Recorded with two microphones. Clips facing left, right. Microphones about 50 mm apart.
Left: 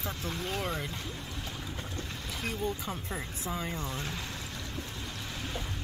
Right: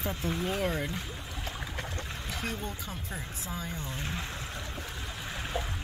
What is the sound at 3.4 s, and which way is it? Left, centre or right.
Speech, left.